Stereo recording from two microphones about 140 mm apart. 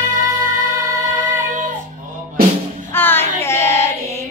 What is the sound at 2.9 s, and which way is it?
Child singing, 15° left (ahead or behind).